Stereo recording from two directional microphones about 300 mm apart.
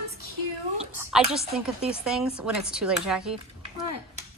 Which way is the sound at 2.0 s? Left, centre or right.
Centre.